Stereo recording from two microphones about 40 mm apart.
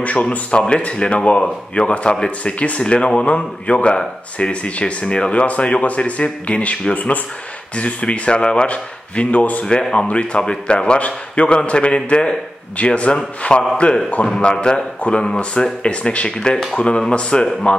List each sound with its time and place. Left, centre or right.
0.0 s a man's voice: left
9.7 s a man's voice: left
14.5 s a man's voice: left
16.3 s a man's voice: centre